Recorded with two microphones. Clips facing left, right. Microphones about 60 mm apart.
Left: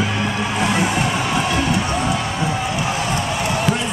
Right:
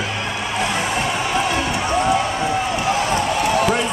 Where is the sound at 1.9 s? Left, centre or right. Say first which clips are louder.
Right 3 dB; centre.